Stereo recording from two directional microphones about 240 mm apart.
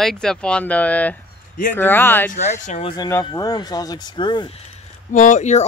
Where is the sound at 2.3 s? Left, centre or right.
Left.